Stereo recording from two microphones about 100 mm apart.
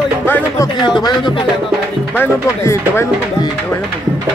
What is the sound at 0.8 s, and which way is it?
Speech, 50° left (ahead or behind).